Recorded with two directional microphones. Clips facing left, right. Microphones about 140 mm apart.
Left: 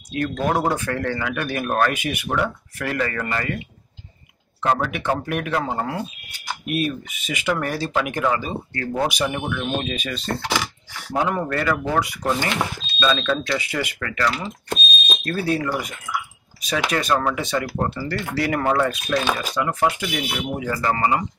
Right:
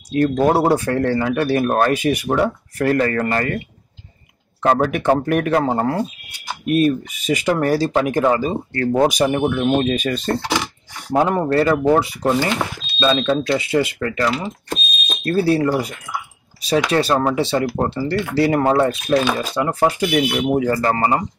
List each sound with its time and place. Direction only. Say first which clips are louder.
0.4 s speech: right 5 dB; 35° right (ahead or behind)
4.6 s speech: right 6 dB; 45° right (ahead or behind)